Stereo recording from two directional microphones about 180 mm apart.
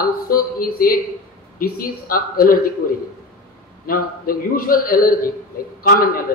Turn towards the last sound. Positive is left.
turn(degrees=60)  # may be behind; listen again after turning